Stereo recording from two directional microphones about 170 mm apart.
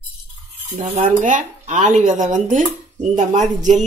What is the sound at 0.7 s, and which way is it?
Speech, 50° right (ahead or behind).